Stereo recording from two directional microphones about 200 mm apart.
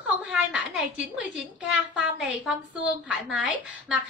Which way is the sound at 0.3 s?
5° right (ahead or behind).